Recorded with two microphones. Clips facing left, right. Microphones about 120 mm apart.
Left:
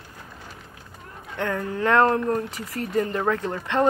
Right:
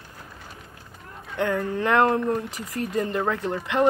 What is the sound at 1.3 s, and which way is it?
Speech, 20° right (ahead or behind).